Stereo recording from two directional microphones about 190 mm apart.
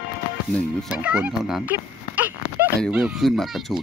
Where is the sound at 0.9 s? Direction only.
5° right (ahead or behind).